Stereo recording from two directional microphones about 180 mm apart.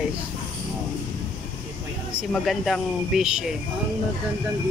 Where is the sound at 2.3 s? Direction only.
Centre (ahead or behind).